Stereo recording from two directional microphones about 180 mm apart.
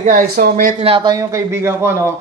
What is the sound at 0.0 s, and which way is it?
Speech, 50° right (ahead or behind).